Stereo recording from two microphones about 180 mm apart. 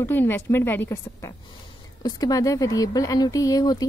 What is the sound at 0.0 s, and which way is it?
A woman's voice, 10° left (ahead or behind).